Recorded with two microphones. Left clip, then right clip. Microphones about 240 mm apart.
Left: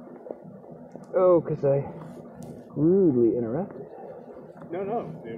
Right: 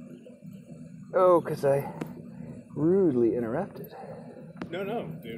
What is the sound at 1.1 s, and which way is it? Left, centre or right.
Speech, centre.